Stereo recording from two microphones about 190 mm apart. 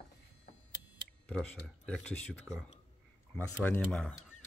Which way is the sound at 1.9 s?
5° left (ahead or behind).